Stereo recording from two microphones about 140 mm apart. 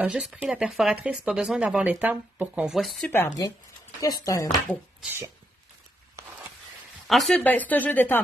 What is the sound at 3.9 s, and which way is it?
Speech, 25° left (ahead or behind).